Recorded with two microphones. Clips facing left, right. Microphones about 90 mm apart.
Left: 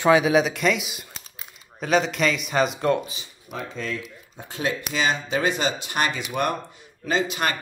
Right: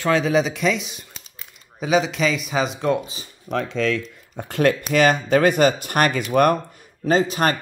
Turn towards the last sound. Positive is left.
turn(degrees=-40)  # may be behind; listen again after turning